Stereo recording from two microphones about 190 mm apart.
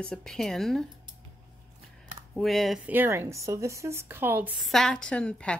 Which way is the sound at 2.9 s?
10° right (ahead or behind).